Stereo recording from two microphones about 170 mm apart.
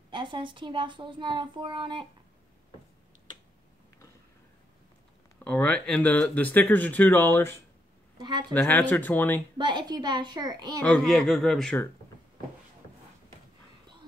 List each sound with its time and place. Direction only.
0.1 s a child's voice: 30° right (ahead or behind)
5.4 s speech: 5° left (ahead or behind)
8.2 s speech: 25° right (ahead or behind)
8.5 s speech: 10° left (ahead or behind)
9.6 s a child's voice: 25° right (ahead or behind)
10.8 s speech: 5° left (ahead or behind)